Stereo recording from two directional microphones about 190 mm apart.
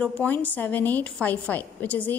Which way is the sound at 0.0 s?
10° left (ahead or behind).